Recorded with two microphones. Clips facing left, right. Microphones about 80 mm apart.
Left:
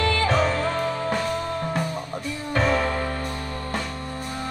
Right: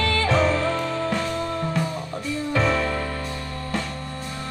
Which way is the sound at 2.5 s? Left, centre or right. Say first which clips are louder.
Left 1 dB; left.